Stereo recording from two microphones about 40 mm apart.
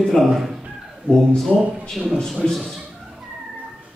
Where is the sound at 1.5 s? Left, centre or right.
Centre.